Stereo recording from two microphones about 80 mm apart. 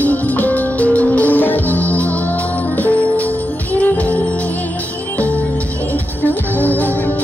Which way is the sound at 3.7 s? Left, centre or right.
Centre.